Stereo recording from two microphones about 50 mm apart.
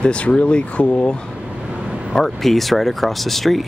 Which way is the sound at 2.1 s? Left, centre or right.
Centre.